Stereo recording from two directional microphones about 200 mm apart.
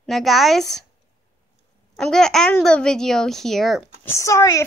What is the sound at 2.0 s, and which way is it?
A child's voice, 5° left (ahead or behind).